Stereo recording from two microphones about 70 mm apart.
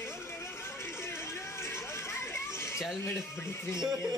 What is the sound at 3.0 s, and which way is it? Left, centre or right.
Speech, left.